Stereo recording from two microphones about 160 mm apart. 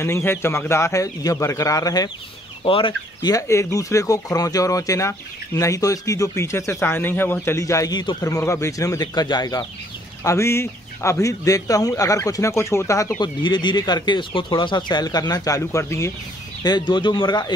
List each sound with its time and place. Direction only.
0.0 s speech: 15° left (ahead or behind)
16.6 s speech: 25° left (ahead or behind)